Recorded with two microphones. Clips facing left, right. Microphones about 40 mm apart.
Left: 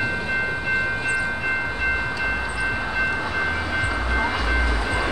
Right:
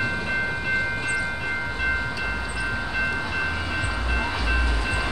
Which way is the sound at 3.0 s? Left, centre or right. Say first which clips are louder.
Left 2 dB; centre.